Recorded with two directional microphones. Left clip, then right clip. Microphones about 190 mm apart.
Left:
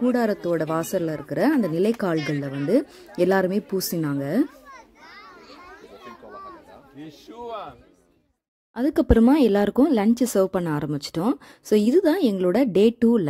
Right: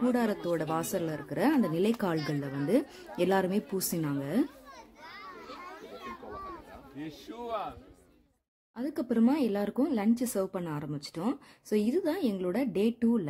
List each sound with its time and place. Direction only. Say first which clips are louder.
0.1 s speech: left 7 dB; 25° left (ahead or behind)
5.0 s children playing: right 1 dB; 70° right (ahead or behind)
5.6 s children playing: left 1 dB; 25° left (ahead or behind)
7.1 s speech: left 3 dB; 25° left (ahead or behind)
8.7 s speech: left 12 dB; 40° left (ahead or behind)